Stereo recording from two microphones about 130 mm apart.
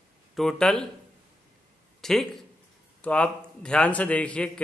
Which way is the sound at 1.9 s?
Centre (ahead or behind).